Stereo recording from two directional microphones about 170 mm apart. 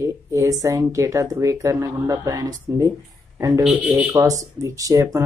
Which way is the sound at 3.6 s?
5° right (ahead or behind).